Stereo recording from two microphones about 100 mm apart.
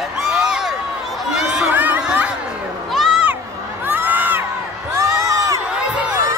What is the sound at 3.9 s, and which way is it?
Crowd, 20° right (ahead or behind).